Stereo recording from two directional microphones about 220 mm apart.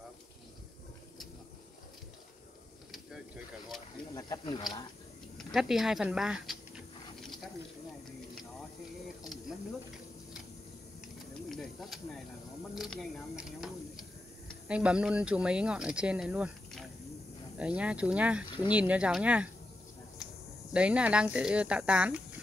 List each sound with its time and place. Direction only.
4.1 s speech: 20° left (ahead or behind)
5.5 s speech: centre (ahead or behind)
9.2 s mechanisms: centre (ahead or behind)
11.4 s snake: centre (ahead or behind)
12.7 s speech: centre (ahead or behind)
20.7 s speech: 5° right (ahead or behind)